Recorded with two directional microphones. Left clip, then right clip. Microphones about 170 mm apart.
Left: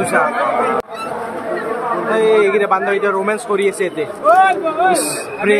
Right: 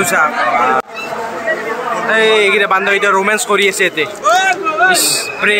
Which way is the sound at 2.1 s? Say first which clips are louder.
Right 2 dB; centre (ahead or behind).